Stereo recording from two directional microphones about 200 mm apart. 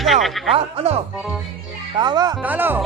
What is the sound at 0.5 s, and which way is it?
Speech, 30° right (ahead or behind).